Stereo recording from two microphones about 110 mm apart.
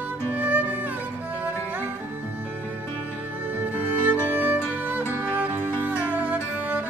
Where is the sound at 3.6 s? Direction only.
15° right (ahead or behind).